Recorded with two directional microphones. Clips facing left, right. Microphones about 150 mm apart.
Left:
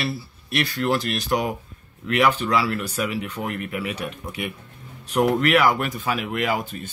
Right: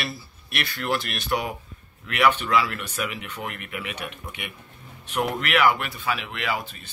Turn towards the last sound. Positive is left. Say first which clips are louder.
# left 5 dB
turn(degrees=45)  # may be behind; listen again after turning